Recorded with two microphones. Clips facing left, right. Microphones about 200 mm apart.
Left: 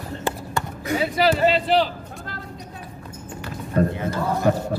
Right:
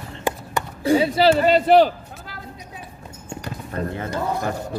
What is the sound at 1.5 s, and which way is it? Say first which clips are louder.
Speech: right 6 dB; 50° right (ahead or behind).